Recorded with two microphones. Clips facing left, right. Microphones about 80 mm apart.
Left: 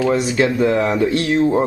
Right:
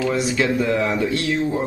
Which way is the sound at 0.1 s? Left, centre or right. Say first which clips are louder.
Left 3 dB; left.